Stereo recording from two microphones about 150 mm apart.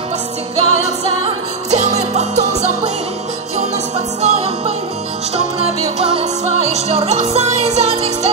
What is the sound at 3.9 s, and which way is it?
Music, 45° right (ahead or behind).